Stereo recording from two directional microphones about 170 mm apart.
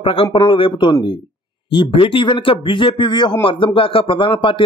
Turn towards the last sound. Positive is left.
turn(degrees=30)  # may be behind; listen again after turning